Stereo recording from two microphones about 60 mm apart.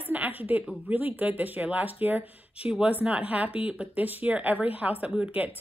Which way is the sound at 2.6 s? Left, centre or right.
Centre.